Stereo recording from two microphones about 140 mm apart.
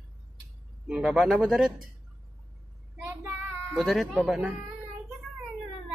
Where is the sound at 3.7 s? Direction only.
Centre (ahead or behind).